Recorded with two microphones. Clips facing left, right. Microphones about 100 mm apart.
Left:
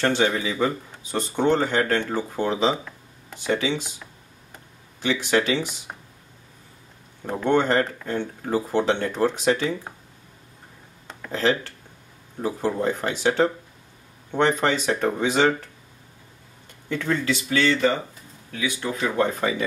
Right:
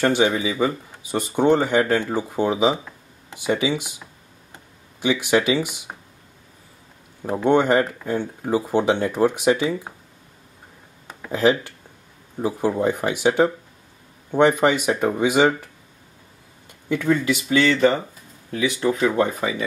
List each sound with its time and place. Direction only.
0.0 s speech: 15° right (ahead or behind)
7.2 s speech: 15° right (ahead or behind)
11.1 s speech: 15° right (ahead or behind)
16.9 s speech: 15° right (ahead or behind)